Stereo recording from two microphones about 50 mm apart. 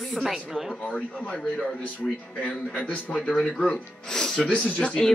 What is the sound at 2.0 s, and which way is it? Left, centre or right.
Speech, left.